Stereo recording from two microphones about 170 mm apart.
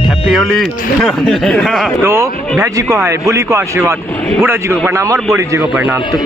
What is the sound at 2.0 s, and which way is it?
Speech, 15° right (ahead or behind).